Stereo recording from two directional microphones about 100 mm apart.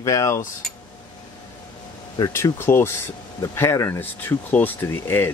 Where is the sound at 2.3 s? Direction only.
25° left (ahead or behind).